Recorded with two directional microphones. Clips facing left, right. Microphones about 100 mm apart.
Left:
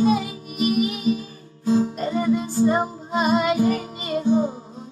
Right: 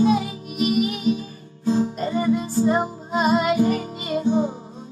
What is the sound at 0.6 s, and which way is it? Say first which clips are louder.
Music: even; 45° left (ahead or behind).